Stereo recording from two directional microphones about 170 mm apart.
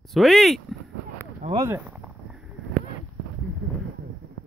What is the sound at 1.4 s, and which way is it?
Speech, 50° right (ahead or behind).